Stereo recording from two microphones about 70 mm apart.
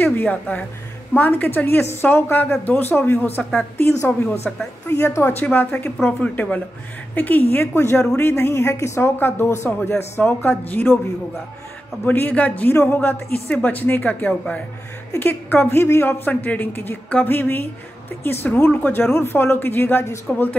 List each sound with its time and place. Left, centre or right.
0.0 s a woman's voice: left
7.6 s a woman's voice: left
12.0 s a woman's voice: left